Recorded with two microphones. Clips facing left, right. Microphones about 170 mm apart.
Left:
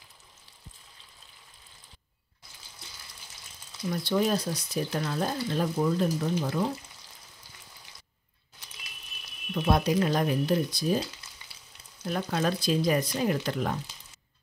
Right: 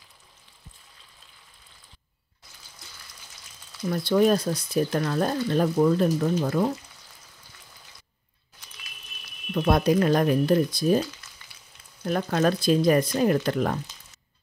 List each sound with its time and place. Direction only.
3.9 s speech: 55° right (ahead or behind)
9.5 s speech: 60° right (ahead or behind)
12.1 s speech: 55° right (ahead or behind)